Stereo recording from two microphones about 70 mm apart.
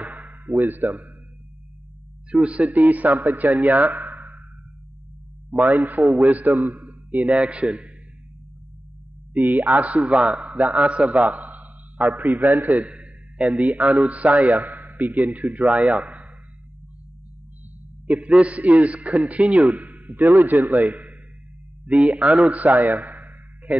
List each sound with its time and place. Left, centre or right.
0.0 s a sound: centre
0.6 s a man's voice: right
2.3 s a man's voice: centre
3.6 s a sound: right
5.9 s a man's voice: centre
9.3 s a man's voice: centre
18.0 s a man's voice: centre
22.1 s a man's voice: centre
22.5 s a sound: right